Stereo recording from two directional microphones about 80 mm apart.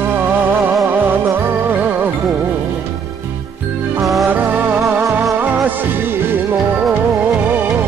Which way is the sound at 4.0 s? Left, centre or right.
Centre.